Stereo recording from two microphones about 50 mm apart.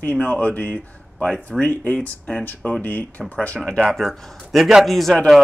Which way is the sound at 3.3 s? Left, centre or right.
Left.